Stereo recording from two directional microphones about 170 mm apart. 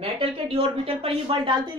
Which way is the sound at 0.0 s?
35° right (ahead or behind).